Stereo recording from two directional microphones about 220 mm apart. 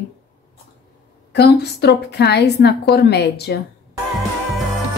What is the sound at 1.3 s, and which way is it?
A woman's voice, 50° left (ahead or behind).